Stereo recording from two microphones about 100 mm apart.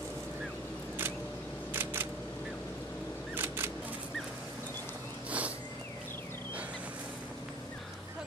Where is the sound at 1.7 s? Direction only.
20° right (ahead or behind).